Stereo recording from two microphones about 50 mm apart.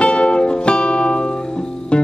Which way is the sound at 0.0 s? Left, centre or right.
Left.